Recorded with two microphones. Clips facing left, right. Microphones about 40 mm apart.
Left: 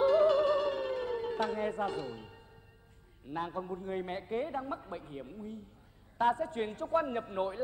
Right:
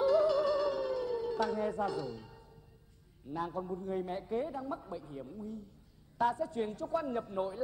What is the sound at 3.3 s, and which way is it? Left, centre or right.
A man's voice, left.